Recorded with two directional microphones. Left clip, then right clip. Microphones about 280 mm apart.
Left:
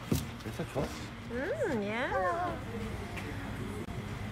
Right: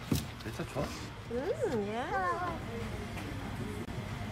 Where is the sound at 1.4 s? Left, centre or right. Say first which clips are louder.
Left 1 dB; centre.